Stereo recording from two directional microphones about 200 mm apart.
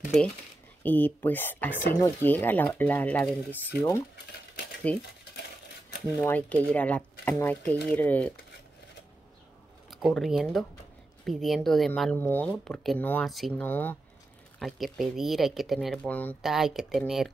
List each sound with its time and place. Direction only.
0.8 s speech: 10° left (ahead or behind)
4.9 s speech: 5° left (ahead or behind)
6.2 s speech: 10° left (ahead or behind)
9.8 s speech: centre (ahead or behind)